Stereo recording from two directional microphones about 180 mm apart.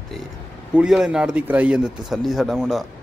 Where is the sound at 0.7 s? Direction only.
5° right (ahead or behind).